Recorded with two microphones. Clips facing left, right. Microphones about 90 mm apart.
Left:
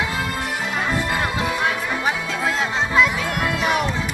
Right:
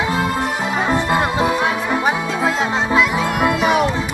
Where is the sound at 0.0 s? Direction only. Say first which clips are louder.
Right 6 dB; 20° right (ahead or behind).